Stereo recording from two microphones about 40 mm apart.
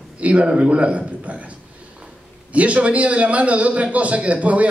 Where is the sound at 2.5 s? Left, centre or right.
Right.